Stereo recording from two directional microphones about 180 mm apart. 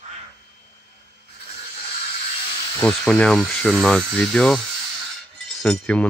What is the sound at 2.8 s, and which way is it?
Speech, 5° left (ahead or behind).